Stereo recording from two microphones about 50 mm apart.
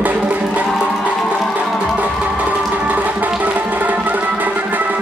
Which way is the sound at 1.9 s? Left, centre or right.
Right.